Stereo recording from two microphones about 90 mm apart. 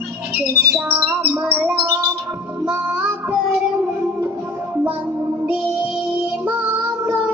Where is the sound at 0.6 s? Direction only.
20° right (ahead or behind).